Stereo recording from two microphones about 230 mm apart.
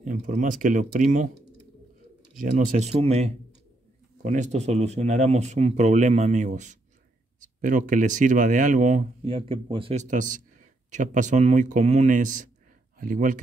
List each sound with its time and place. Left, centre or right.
0.0 s speech: right
2.3 s speech: right